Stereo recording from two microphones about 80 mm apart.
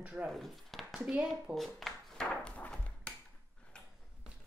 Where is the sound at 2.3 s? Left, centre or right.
Centre.